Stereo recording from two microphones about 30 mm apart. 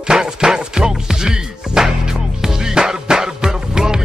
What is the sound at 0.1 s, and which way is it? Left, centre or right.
Music, right.